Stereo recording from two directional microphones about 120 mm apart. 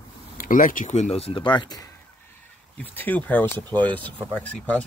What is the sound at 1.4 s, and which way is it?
Speech, 40° left (ahead or behind).